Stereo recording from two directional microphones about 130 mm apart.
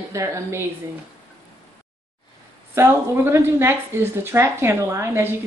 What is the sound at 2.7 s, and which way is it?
A woman's voice, 20° right (ahead or behind).